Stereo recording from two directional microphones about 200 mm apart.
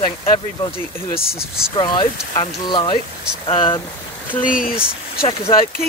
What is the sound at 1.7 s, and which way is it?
Speech, 25° left (ahead or behind).